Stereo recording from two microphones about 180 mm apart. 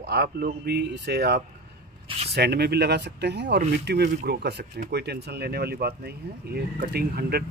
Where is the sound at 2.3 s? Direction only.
65° right (ahead or behind).